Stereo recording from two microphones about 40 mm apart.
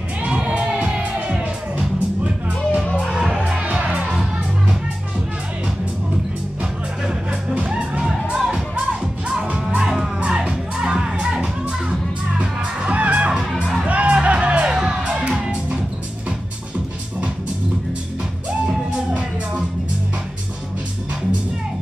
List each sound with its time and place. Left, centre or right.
0.3 s music: right
3.1 s music: centre
8.3 s music: right
12.4 s music: right
14.8 s music: centre